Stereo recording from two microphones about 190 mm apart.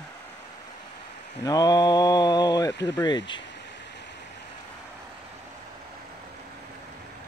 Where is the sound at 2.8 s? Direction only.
20° left (ahead or behind).